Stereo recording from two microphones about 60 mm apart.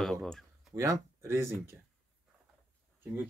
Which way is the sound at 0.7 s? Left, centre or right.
Right.